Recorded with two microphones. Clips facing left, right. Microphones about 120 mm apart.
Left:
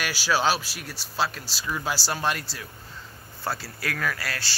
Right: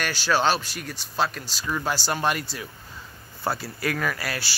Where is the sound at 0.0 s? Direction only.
5° left (ahead or behind).